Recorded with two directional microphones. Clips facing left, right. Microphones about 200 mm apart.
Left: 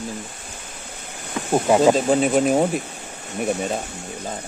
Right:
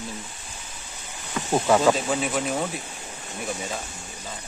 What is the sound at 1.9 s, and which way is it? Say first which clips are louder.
Speech: left 7 dB; 40° left (ahead or behind).